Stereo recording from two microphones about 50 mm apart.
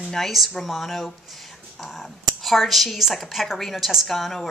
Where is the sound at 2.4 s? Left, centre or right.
Centre.